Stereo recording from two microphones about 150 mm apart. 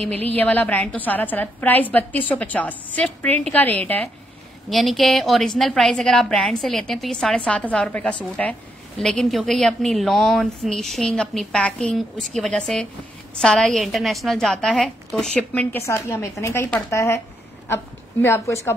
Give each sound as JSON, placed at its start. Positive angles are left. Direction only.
{"t": 0.1, "sound": "a woman's voice", "side_deg": 10}
{"t": 15.8, "sound": "a woman's voice", "side_deg": 20}
{"t": 18.2, "sound": "a woman's voice", "side_deg": 15}